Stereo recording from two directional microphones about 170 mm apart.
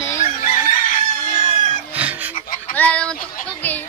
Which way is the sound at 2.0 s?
10° right (ahead or behind).